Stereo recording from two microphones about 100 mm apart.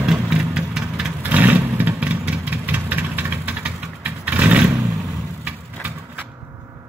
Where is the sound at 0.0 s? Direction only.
5° right (ahead or behind).